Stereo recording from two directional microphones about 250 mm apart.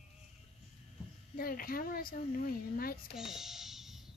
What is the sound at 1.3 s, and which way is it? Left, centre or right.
Speech, left.